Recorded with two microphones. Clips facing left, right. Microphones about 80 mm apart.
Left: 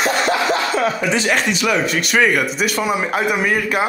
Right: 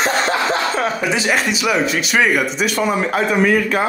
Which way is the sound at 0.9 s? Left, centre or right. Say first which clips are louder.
Even; centre.